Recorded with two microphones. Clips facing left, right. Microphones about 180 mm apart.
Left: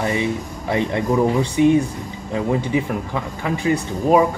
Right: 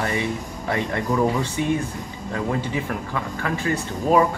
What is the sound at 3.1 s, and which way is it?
Speech, 15° left (ahead or behind).